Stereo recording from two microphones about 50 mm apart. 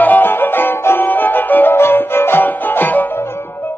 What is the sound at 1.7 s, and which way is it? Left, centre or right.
Music, left.